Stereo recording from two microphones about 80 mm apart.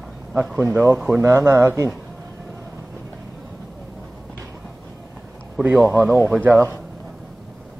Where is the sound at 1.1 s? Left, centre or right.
Right.